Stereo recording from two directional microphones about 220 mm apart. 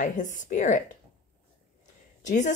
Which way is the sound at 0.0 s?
35° left (ahead or behind).